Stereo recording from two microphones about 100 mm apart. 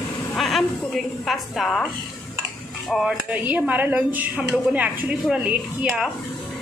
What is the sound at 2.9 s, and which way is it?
Speech, 5° right (ahead or behind).